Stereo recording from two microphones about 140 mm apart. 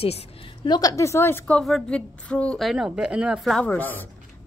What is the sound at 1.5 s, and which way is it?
A woman's voice, 5° left (ahead or behind).